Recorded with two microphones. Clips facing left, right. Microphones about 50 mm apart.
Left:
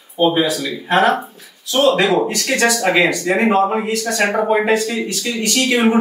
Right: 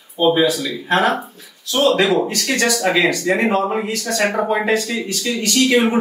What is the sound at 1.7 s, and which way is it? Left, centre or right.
Speech, left.